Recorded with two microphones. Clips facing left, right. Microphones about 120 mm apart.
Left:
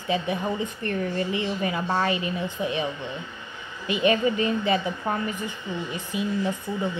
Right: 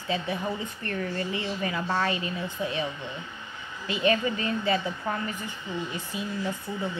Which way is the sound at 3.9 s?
20° left (ahead or behind).